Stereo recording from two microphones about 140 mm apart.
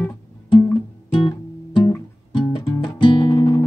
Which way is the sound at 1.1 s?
35° left (ahead or behind).